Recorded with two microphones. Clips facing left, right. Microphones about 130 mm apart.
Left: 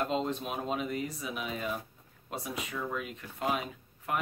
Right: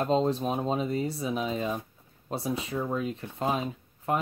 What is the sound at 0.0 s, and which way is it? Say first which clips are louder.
Speech: right 6 dB; 35° right (ahead or behind).